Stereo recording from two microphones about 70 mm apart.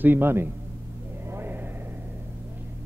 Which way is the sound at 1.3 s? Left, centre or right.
Right.